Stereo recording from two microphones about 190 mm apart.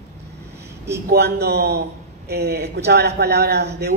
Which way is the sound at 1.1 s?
60° right (ahead or behind).